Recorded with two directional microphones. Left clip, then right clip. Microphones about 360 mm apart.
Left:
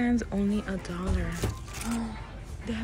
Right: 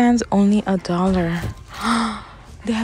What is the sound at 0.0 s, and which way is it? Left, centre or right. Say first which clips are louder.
Speech: right 12 dB; centre.